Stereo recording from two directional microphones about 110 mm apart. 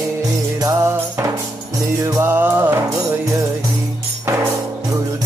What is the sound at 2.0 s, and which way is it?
Music, 25° right (ahead or behind).